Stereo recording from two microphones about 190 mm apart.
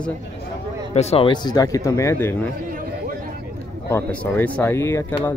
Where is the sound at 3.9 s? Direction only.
10° left (ahead or behind).